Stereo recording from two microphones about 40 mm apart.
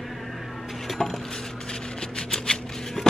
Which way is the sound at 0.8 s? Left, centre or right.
Centre.